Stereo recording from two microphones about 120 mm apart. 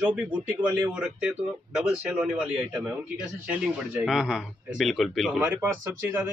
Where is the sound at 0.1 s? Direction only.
10° right (ahead or behind).